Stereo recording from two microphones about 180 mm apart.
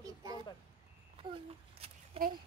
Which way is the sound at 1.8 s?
35° right (ahead or behind).